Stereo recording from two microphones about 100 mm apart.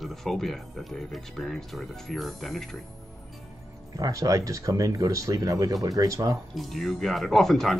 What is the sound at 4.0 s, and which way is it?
Speech, 35° right (ahead or behind).